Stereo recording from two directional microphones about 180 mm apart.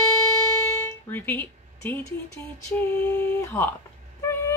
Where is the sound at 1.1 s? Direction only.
10° left (ahead or behind).